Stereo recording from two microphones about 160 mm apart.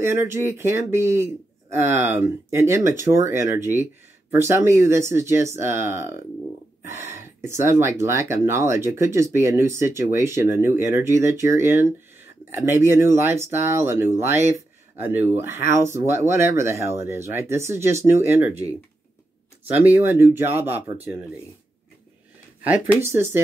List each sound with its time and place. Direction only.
0.0 s a man's voice: 15° right (ahead or behind)
19.8 s a man's voice: 10° right (ahead or behind)
23.0 s a man's voice: 15° right (ahead or behind)